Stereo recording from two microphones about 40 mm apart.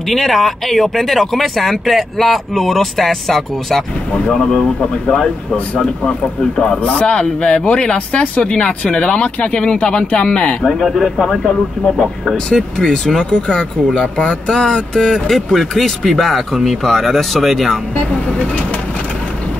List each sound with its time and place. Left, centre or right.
0.1 s speech: centre
6.8 s speech: left
7.1 s speech: left
10.6 s speech: centre
12.4 s speech: centre